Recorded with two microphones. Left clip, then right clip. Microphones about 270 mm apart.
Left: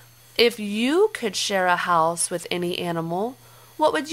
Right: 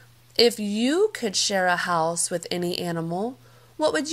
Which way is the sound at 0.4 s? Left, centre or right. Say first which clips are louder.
Even; centre.